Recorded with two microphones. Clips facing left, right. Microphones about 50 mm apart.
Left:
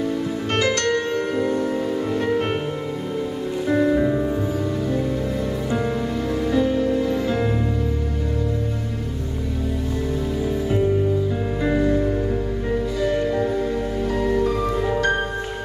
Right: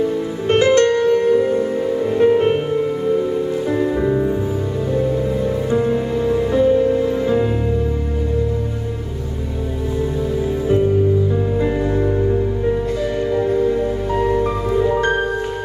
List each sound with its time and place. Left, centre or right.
0.5 s music: right
0.9 s music: centre
3.6 s music: centre
6.2 s music: right
11.8 s music: centre
13.0 s music: centre
13.5 s music: centre
14.1 s music: right